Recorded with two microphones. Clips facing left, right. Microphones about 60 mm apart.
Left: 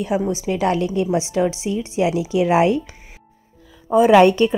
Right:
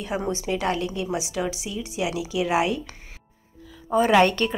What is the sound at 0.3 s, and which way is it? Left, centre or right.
A woman's voice, centre.